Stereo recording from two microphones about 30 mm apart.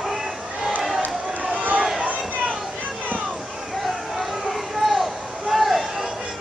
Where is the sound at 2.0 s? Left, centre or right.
Right.